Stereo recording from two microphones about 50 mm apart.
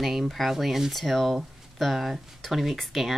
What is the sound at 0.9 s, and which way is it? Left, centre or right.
Speech, centre.